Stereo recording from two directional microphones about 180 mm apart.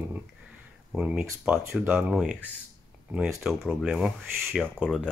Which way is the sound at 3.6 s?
Centre (ahead or behind).